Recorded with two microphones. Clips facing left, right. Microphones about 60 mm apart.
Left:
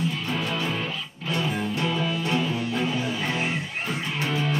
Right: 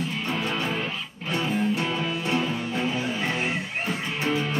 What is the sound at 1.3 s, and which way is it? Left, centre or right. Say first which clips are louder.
Music: right 2 dB; right.